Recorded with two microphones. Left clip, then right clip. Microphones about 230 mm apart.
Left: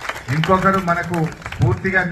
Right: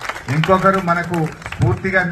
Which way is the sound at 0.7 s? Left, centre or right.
Right.